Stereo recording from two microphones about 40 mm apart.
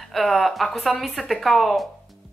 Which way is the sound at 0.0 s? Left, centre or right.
Centre.